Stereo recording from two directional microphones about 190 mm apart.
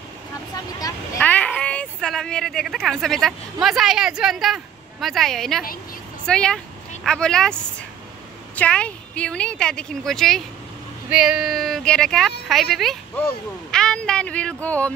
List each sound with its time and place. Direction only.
0.7 s speech: 20° left (ahead or behind)
1.2 s speech: 5° left (ahead or behind)
8.5 s speech: 5° left (ahead or behind)